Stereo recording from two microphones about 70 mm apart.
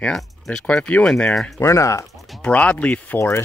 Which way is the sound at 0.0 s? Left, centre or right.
Centre.